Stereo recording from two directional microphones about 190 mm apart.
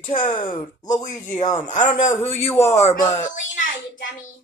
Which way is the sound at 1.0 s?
40° left (ahead or behind).